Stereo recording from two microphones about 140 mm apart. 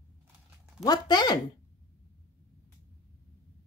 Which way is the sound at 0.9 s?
30° left (ahead or behind).